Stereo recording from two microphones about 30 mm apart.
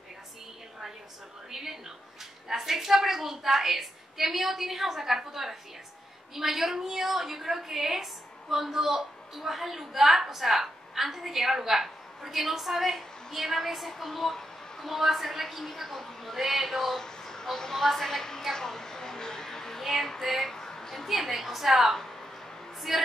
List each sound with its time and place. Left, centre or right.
1.5 s a woman's voice: centre
14.9 s a woman's voice: centre
16.3 s a woman's voice: centre
16.9 s a woman's voice: centre
18.5 s a sound: centre
19.8 s female singing: centre
20.2 s a woman's voice: centre
20.4 s a sound: centre
21.1 s a woman's voice: centre